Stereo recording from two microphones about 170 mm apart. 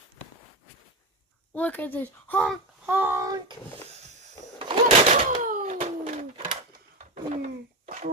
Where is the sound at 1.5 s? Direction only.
10° left (ahead or behind).